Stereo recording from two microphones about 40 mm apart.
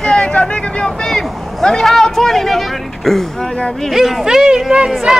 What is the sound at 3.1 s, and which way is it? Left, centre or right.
Speech, centre.